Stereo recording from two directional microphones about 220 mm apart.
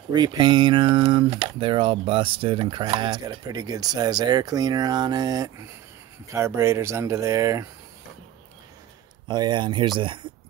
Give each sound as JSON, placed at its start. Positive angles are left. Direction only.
{"t": 0.1, "sound": "speech", "side_deg": -20}
{"t": 9.3, "sound": "speech", "side_deg": -20}